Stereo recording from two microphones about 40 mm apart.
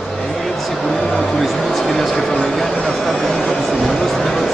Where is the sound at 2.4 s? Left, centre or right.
Centre.